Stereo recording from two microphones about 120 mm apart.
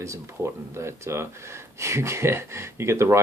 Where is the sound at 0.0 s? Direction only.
25° right (ahead or behind).